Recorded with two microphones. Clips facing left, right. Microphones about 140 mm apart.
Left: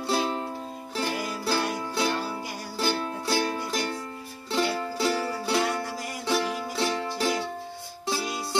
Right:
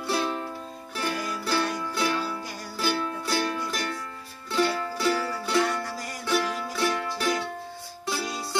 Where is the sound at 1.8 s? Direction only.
25° left (ahead or behind).